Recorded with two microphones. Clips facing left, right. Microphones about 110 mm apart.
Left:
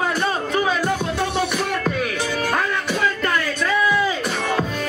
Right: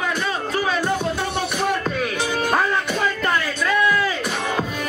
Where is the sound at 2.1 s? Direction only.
20° right (ahead or behind).